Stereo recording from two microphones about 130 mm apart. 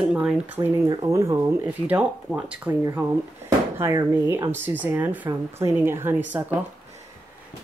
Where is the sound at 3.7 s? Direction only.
20° right (ahead or behind).